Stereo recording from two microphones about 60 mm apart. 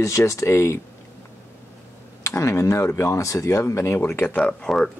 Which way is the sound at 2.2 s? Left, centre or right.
Left.